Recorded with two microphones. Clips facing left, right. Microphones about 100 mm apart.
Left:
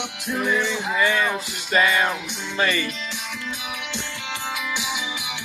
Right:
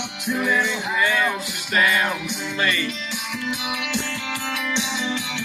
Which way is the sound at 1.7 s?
25° left (ahead or behind).